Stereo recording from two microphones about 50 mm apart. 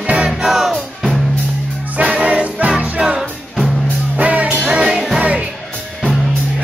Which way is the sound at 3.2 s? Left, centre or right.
Centre.